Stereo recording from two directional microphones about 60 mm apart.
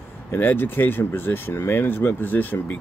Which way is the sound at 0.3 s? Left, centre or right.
Left.